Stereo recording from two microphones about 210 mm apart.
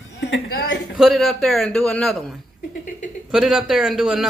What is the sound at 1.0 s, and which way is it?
A man's voice, centre (ahead or behind).